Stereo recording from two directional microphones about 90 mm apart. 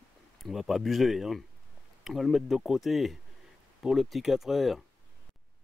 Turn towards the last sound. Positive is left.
turn(degrees=0)  # may be behind; listen again after turning